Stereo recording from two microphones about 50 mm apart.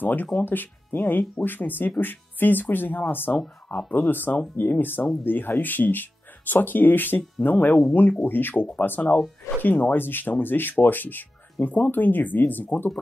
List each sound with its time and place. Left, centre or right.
0.0 s speech: left